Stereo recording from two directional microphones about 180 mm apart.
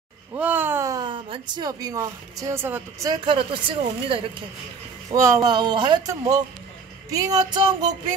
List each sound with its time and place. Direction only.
0.3 s speech: 10° right (ahead or behind); by 4.2 s 30° right (ahead or behind)
5.1 s speech: 15° right (ahead or behind)